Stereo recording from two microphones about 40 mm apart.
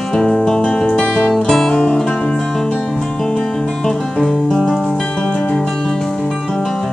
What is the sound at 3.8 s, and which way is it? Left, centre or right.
Music, centre.